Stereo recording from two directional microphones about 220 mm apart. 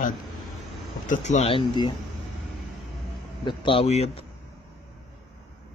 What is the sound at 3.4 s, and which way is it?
Speech, 20° left (ahead or behind).